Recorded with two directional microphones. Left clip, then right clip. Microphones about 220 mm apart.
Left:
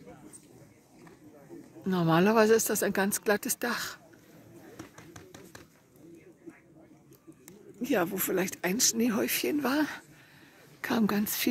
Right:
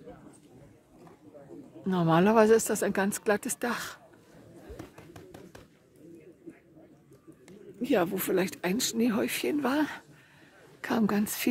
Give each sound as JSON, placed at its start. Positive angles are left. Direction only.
{"t": 1.9, "sound": "speech", "side_deg": 0}
{"t": 4.7, "sound": "tap", "side_deg": -20}
{"t": 7.8, "sound": "speech", "side_deg": 5}